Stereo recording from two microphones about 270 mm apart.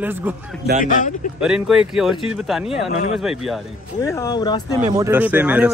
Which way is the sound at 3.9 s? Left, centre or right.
Centre.